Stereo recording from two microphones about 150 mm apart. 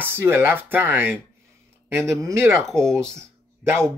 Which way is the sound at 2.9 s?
20° right (ahead or behind).